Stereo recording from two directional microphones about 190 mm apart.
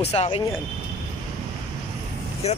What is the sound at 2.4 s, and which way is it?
Speech, 35° left (ahead or behind).